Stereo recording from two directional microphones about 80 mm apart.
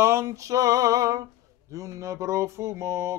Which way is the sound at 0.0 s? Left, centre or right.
Right.